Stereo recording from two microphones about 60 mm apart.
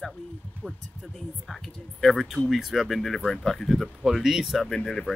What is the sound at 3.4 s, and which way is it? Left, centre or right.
Speech, centre.